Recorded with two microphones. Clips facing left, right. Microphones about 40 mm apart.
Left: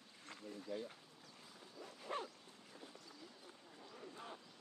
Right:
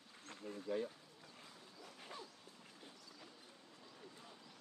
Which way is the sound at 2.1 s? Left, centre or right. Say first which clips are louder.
Left 9 dB; left.